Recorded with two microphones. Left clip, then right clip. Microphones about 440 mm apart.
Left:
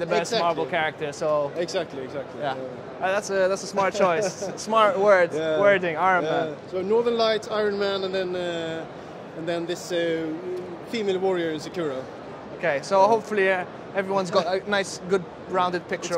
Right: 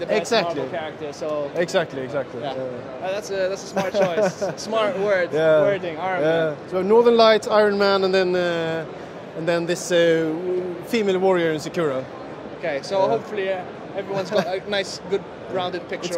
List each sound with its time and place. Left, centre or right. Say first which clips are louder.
0.3 s speech: right 6 dB; right
0.7 s a man's voice: left 3 dB; left
1.6 s speech: right 6 dB; right
3.0 s a man's voice: left 2 dB; left
5.3 s speech: right 8 dB; right
5.7 s a man's voice: left 3 dB; left
6.2 s speech: right 5 dB; right
12.6 s a man's voice: left 2 dB; left